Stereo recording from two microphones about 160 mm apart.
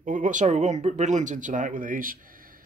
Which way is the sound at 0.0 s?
50° right (ahead or behind).